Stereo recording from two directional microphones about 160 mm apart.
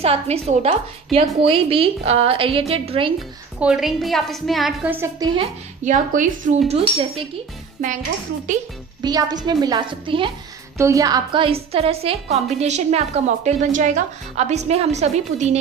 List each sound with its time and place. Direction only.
0.0 s a woman's voice: 40° right (ahead or behind)
3.2 s a woman's voice: 5° right (ahead or behind)
4.8 s a woman's voice: 15° right (ahead or behind)
5.2 s a woman's voice: 30° right (ahead or behind)
5.9 s a woman's voice: 55° right (ahead or behind)
6.7 s a woman's voice: 35° right (ahead or behind)
9.0 s a woman's voice: 25° right (ahead or behind)
10.8 s a woman's voice: 20° right (ahead or behind); by 15.5 s 45° right (ahead or behind)